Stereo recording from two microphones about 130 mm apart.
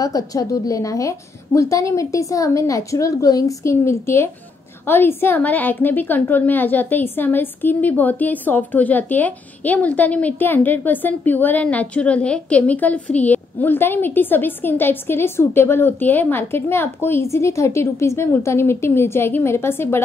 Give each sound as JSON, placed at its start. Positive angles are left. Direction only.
{"t": 0.0, "sound": "a woman's voice", "side_deg": 25}